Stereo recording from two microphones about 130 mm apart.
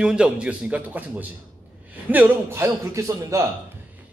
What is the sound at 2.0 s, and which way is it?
A man's voice, 15° right (ahead or behind).